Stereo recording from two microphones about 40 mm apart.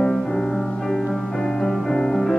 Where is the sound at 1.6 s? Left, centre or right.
Centre.